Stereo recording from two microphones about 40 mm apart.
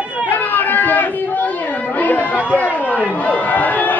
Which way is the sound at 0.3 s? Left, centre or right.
Left.